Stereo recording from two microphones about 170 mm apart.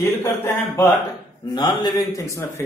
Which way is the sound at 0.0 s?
15° left (ahead or behind).